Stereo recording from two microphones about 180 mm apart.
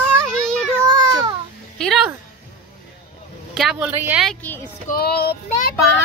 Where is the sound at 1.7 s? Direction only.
5° left (ahead or behind).